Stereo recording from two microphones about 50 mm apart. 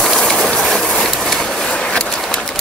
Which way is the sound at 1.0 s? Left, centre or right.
Centre.